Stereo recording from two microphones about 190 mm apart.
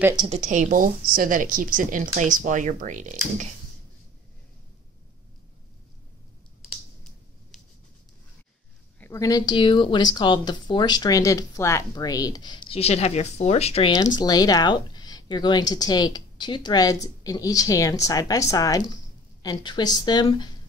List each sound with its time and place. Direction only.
0.1 s speech: 25° right (ahead or behind)
0.4 s a woman's voice: 40° right (ahead or behind)
9.0 s speech: 15° left (ahead or behind)